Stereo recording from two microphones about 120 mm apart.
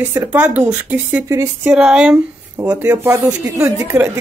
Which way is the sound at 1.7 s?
5° right (ahead or behind).